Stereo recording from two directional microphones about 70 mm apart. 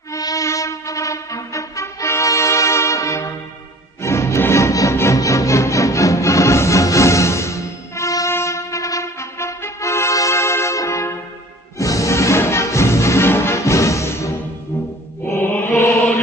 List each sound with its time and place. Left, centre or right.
0.1 s music: left